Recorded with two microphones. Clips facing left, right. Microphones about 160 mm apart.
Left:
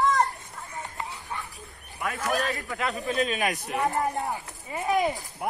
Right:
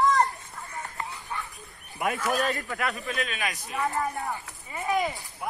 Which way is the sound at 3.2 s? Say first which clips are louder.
Left 6 dB; 40° left (ahead or behind).